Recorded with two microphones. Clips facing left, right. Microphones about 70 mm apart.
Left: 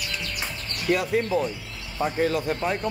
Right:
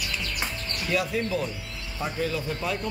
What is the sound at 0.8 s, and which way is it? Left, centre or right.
Speech, left.